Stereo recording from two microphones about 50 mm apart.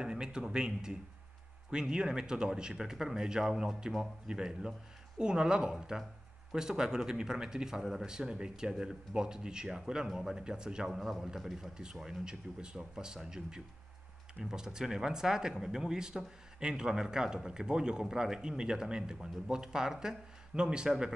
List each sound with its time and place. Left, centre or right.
0.0 s speech: centre
11.5 s speech: centre